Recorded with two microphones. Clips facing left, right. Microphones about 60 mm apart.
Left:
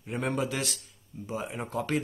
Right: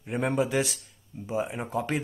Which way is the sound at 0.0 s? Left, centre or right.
Centre.